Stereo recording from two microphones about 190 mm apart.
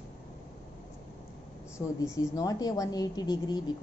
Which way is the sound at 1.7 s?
15° left (ahead or behind).